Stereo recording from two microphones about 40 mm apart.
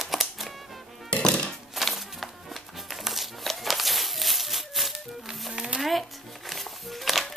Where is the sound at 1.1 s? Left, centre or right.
Left.